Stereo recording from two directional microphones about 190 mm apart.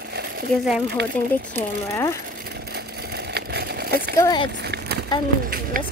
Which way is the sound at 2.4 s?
55° right (ahead or behind).